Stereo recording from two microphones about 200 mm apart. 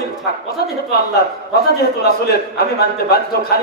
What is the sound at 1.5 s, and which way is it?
A man's voice, 50° left (ahead or behind).